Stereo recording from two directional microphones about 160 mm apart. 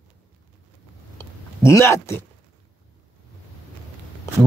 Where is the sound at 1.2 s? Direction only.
15° left (ahead or behind).